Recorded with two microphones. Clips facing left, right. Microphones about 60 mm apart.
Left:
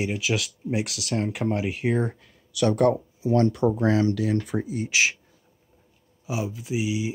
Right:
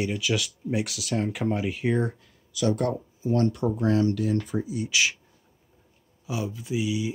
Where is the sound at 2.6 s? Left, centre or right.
Left.